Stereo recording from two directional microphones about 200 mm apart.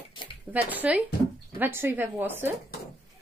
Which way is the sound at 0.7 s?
5° right (ahead or behind).